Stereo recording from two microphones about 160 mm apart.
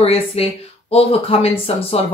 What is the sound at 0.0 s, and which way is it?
Speech, 40° left (ahead or behind).